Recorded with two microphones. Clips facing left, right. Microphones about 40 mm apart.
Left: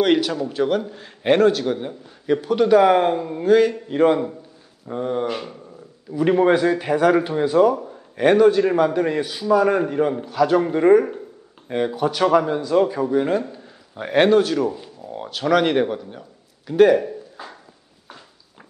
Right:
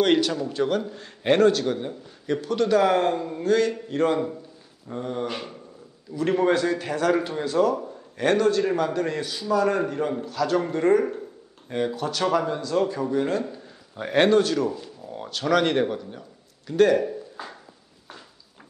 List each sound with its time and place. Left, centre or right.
0.0 s a man's voice: centre
5.3 s speech: centre
6.1 s a man's voice: centre
14.8 s a sound: centre